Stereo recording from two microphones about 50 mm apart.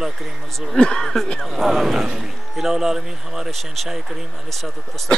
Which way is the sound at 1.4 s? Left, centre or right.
Centre.